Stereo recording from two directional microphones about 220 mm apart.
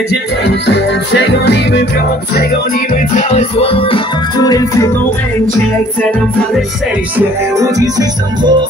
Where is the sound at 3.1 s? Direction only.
30° left (ahead or behind).